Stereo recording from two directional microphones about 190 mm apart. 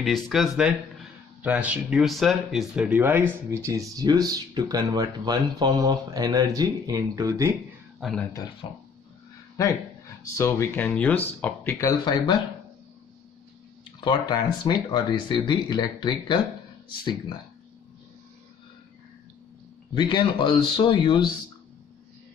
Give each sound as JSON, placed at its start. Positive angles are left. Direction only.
{"t": 0.0, "sound": "speech", "side_deg": 0}
{"t": 8.0, "sound": "speech", "side_deg": 0}
{"t": 8.6, "sound": "speech", "side_deg": 25}
{"t": 12.0, "sound": "speech", "side_deg": 20}
{"t": 14.0, "sound": "speech", "side_deg": 20}
{"t": 19.9, "sound": "speech", "side_deg": 25}